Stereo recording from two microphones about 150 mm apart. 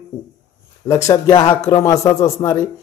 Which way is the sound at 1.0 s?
20° left (ahead or behind).